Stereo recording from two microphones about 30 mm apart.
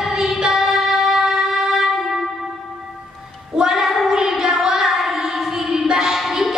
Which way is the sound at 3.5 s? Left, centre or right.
Centre.